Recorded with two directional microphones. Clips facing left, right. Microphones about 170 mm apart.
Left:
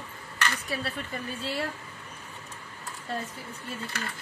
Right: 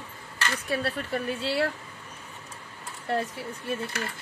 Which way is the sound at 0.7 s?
70° right (ahead or behind).